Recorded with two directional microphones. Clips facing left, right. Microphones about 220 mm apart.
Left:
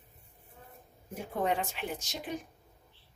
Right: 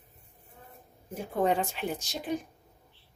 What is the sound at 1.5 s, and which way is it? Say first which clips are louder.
Speech: right 4 dB; 35° right (ahead or behind).